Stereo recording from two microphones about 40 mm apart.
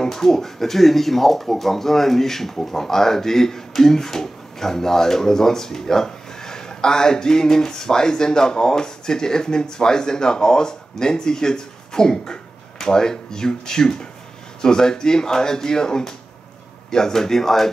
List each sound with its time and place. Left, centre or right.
0.0 s speech: centre